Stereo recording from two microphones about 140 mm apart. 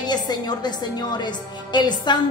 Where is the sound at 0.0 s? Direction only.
30° left (ahead or behind).